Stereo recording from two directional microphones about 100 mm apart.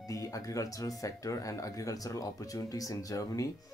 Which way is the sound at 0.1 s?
35° left (ahead or behind).